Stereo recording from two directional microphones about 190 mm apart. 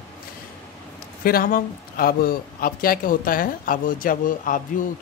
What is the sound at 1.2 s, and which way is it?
A man's voice, 50° left (ahead or behind).